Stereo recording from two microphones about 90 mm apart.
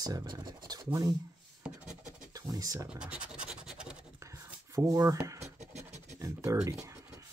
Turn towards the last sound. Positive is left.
turn(degrees=-35)  # may be behind; listen again after turning